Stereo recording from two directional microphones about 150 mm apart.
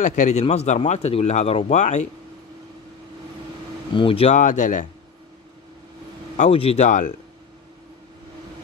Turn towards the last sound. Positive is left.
turn(degrees=55)  # may be behind; listen again after turning